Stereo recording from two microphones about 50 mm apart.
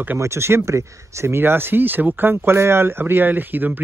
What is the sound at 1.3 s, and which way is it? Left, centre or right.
Speech, right.